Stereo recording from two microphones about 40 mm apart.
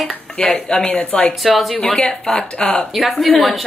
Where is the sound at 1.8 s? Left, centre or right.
Centre.